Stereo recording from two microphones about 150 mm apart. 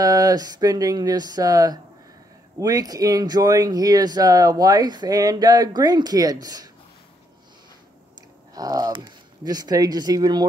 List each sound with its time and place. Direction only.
0.0 s speech: 25° right (ahead or behind)
8.5 s speech: 25° right (ahead or behind)